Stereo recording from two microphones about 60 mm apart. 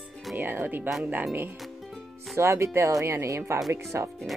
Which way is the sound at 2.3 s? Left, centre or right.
Right.